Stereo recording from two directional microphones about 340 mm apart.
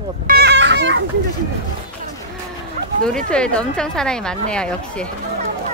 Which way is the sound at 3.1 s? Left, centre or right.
Centre.